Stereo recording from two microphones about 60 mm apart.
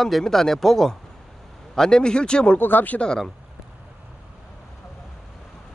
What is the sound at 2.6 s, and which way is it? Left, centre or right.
Speech, left.